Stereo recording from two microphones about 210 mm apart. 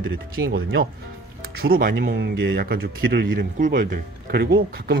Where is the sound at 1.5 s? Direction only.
45° right (ahead or behind).